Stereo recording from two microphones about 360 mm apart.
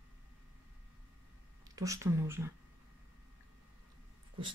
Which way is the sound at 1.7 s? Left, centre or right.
Centre.